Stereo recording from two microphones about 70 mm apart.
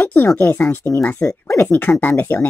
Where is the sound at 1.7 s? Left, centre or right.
Left.